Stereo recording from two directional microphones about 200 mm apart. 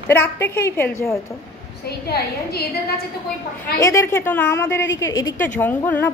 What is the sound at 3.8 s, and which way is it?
A woman's voice, 15° left (ahead or behind).